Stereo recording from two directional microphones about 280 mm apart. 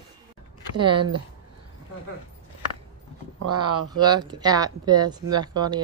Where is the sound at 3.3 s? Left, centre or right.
Right.